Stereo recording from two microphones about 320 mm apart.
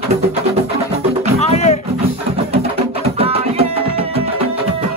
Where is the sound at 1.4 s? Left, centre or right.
Centre.